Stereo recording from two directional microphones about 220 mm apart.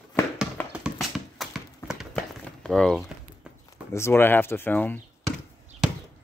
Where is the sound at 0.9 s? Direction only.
Centre (ahead or behind).